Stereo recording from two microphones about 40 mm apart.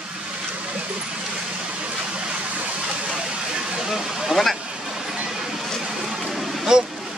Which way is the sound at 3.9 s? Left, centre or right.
Centre.